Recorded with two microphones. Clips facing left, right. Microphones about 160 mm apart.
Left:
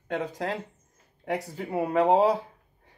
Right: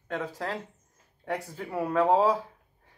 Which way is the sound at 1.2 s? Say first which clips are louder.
Left 3 dB; 15° left (ahead or behind).